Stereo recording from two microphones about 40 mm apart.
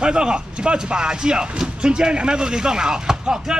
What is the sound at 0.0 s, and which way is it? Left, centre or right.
Speech, right.